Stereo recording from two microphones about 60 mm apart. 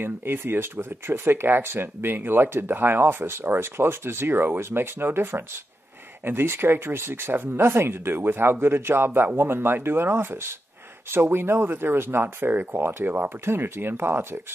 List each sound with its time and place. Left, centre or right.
0.0 s speech: right